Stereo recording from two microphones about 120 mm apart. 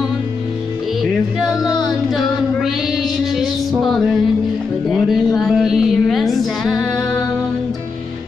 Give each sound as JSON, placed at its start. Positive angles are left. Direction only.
{"t": 1.0, "sound": "music", "side_deg": 0}
{"t": 1.8, "sound": "child singing", "side_deg": 0}
{"t": 3.8, "sound": "music", "side_deg": 0}